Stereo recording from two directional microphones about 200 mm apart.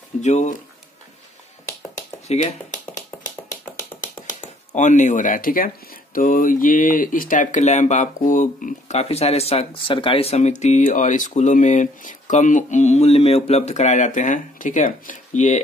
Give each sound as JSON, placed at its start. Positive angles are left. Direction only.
{"t": 0.2, "sound": "speech", "side_deg": 35}
{"t": 2.2, "sound": "speech", "side_deg": 35}
{"t": 4.3, "sound": "speech", "side_deg": 40}